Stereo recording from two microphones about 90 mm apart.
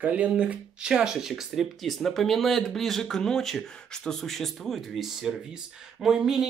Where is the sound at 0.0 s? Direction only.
15° right (ahead or behind).